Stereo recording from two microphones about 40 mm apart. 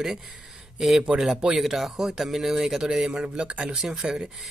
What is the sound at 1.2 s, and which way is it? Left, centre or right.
Speech, centre.